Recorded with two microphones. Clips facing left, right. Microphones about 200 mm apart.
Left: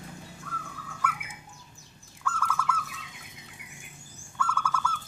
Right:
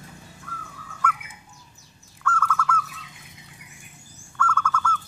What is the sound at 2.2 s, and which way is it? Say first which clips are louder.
Bird: right 5 dB; 10° left (ahead or behind).